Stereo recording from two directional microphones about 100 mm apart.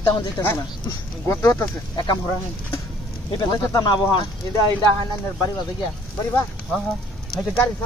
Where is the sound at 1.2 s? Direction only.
30° left (ahead or behind).